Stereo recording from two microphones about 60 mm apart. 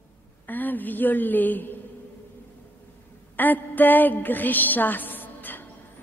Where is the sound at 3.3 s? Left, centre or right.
Left.